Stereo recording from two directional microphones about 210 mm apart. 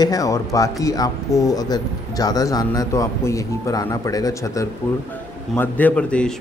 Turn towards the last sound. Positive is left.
turn(degrees=5)  # may be behind; listen again after turning